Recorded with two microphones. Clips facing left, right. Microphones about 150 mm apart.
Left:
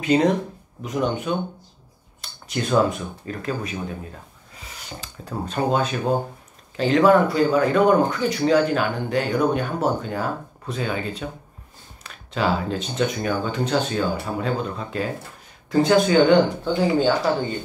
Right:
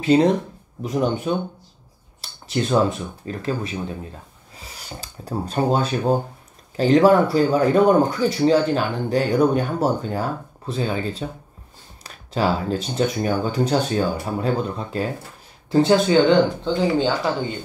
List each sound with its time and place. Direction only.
0.0 s speech: 30° right (ahead or behind)
2.2 s a sound: 30° right (ahead or behind)
3.3 s speech: 30° right (ahead or behind)
5.0 s speech: 35° right (ahead or behind); by 17.5 s 20° right (ahead or behind)